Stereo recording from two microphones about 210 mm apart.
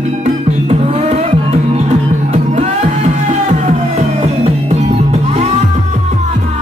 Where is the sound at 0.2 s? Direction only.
30° right (ahead or behind).